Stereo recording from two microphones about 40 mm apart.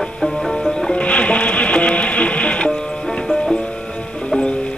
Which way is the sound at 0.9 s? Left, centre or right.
Left.